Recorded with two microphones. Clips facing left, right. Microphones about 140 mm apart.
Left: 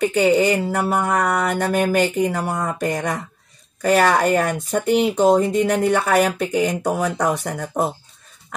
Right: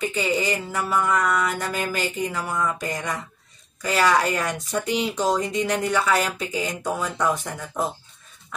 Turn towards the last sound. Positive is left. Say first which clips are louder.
# left 5 dB
turn(degrees=40)  # may be behind; listen again after turning